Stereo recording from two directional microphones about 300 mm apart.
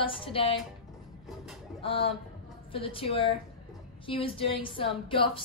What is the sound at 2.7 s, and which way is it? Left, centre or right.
A woman's voice, centre.